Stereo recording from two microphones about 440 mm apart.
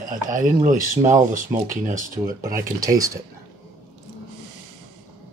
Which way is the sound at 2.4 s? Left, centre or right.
Centre.